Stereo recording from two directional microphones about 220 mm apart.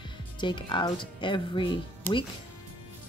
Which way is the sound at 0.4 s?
20° left (ahead or behind).